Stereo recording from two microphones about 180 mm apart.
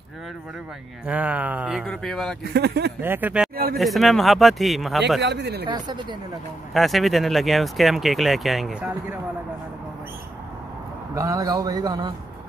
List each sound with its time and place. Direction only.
1.0 s speech: 10° right (ahead or behind)
2.5 s speech: 65° right (ahead or behind)
3.0 s speech: 10° right (ahead or behind)
5.2 s speech: 70° right (ahead or behind)
5.7 s a man's voice: 25° right (ahead or behind)
6.7 s speech: centre (ahead or behind)
11.1 s a man's voice: 20° right (ahead or behind)